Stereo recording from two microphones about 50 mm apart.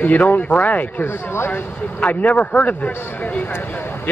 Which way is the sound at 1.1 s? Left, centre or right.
Left.